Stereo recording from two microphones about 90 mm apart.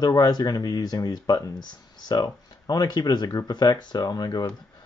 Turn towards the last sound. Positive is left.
turn(degrees=50)  # may be behind; listen again after turning